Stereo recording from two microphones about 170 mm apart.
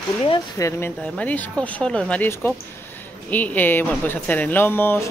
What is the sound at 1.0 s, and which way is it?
Speech, 10° left (ahead or behind).